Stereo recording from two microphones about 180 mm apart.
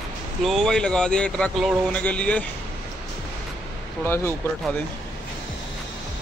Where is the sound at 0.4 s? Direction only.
Centre (ahead or behind).